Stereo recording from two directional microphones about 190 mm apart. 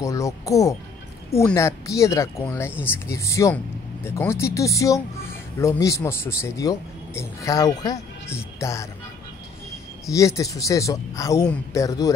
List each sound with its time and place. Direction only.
0.0 s speech: 15° left (ahead or behind)
10.0 s speech: 15° left (ahead or behind)